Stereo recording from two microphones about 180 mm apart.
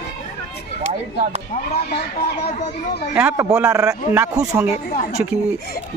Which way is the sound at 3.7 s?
20° right (ahead or behind).